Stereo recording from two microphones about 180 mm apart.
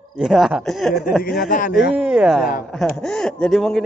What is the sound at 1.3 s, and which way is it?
Speech, 50° left (ahead or behind).